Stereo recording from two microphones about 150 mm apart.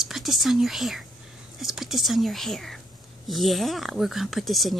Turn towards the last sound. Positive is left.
turn(degrees=0)  # may be behind; listen again after turning